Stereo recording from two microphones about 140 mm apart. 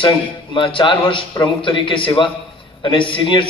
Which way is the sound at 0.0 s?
35° left (ahead or behind).